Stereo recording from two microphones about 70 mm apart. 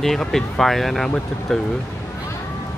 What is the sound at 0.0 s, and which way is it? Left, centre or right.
Speech, centre.